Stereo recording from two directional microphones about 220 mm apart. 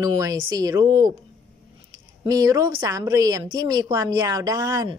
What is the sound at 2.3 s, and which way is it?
A woman's voice, 15° right (ahead or behind).